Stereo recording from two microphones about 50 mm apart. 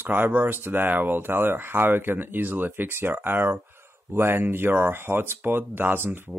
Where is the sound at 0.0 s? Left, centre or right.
Right.